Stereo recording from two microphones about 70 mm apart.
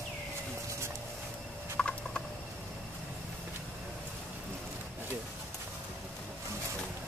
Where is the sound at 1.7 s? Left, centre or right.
Centre.